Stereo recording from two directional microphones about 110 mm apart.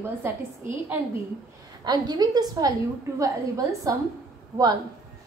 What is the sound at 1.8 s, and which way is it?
A woman's voice, 40° right (ahead or behind).